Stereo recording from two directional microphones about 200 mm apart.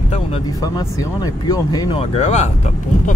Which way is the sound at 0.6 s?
20° left (ahead or behind).